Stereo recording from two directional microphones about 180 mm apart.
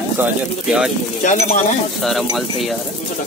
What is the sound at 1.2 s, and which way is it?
Speech, 40° left (ahead or behind).